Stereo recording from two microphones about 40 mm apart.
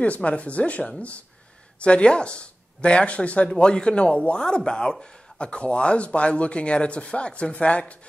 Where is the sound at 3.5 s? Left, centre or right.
Left.